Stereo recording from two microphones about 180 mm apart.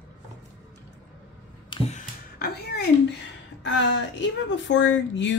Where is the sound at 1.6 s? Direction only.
30° left (ahead or behind).